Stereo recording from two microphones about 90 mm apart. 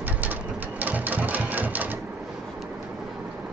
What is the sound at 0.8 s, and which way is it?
Sewing machine, 20° right (ahead or behind).